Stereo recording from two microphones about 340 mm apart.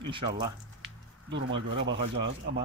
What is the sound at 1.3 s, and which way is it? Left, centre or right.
Speech, right.